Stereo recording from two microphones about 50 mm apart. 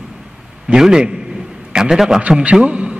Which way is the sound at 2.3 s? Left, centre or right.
Centre.